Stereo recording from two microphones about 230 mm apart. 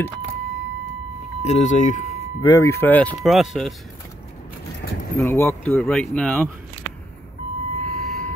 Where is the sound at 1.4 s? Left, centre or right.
Left.